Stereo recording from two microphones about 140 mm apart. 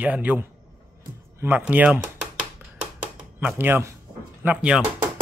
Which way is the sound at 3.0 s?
10° right (ahead or behind).